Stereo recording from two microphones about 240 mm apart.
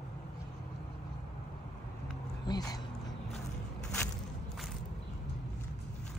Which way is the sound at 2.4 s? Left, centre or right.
Centre.